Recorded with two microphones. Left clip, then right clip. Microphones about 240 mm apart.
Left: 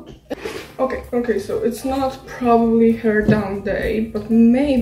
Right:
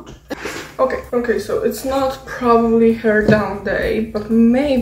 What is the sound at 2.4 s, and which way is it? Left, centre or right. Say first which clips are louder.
A woman's voice: right 2 dB; centre.